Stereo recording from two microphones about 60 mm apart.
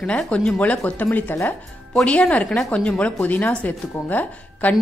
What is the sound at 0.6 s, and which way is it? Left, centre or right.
Speech, left.